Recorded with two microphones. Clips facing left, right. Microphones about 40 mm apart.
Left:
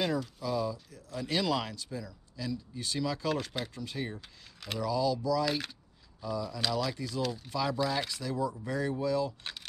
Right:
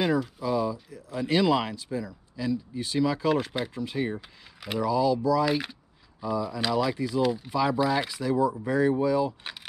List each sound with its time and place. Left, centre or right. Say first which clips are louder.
0.0 s speech: right 6 dB; centre